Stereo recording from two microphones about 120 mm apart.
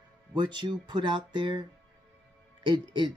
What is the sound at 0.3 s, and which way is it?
Speech, 40° right (ahead or behind).